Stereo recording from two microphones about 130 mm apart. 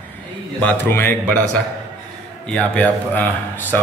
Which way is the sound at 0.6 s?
15° left (ahead or behind).